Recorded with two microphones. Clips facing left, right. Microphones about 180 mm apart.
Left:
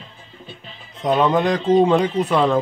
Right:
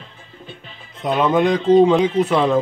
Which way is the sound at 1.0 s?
5° right (ahead or behind).